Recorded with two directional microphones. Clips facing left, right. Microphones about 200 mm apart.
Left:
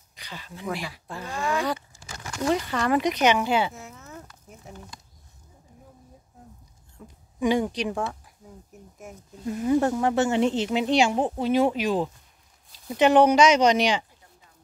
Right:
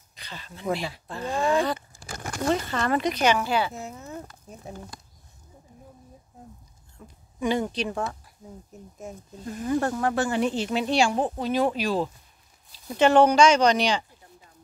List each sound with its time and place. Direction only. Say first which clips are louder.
0.1 s speech: left 1 dB; 10° left (ahead or behind)
1.3 s speech: right 4 dB; 20° right (ahead or behind)
2.1 s a sound: right 2 dB; 55° right (ahead or behind)
2.7 s speech: left 2 dB; 15° left (ahead or behind)
3.8 s a sound: right 5 dB; 30° right (ahead or behind)
7.3 s speech: left 2 dB; 15° left (ahead or behind)
7.9 s speech: left 1 dB; centre (ahead or behind)
8.7 s speech: right 3 dB; 25° right (ahead or behind)
9.7 s speech: left 3 dB; 20° left (ahead or behind)